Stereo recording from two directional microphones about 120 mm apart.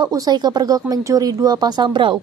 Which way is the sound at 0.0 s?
35° right (ahead or behind).